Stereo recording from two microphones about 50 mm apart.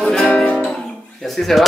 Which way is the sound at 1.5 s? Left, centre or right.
Centre.